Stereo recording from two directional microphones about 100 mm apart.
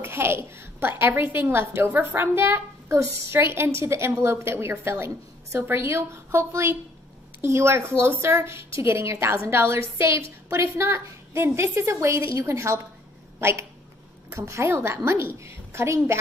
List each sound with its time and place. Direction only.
0.0 s a woman's voice: 25° right (ahead or behind)